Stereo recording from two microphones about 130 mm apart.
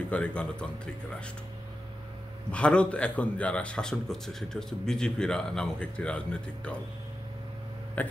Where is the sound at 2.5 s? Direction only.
10° left (ahead or behind).